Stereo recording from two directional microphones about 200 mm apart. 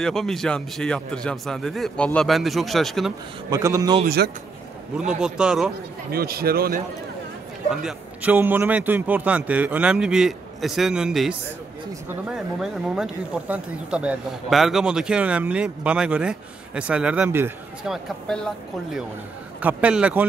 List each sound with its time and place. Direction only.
0.0 s speech: centre (ahead or behind)
3.4 s a man's voice: 15° right (ahead or behind)
4.0 s speech: 55° right (ahead or behind)
4.9 s speech: 5° right (ahead or behind)
6.1 s speech: 50° right (ahead or behind)
7.7 s a man's voice: 5° right (ahead or behind)